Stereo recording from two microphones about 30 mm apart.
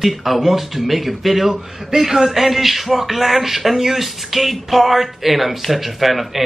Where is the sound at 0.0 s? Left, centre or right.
Centre.